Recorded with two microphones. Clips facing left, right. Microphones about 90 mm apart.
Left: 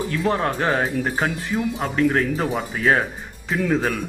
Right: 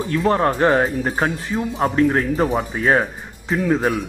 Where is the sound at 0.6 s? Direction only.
30° right (ahead or behind).